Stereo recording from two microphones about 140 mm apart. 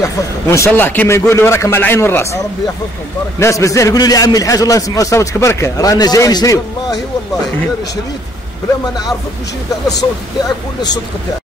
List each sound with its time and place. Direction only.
0.0 s a man's voice: 20° left (ahead or behind)
3.3 s a man's voice: 20° left (ahead or behind)